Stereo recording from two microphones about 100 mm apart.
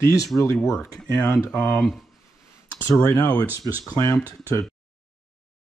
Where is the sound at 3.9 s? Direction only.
35° left (ahead or behind).